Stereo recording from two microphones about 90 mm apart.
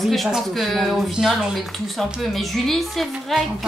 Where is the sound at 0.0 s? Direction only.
Centre (ahead or behind).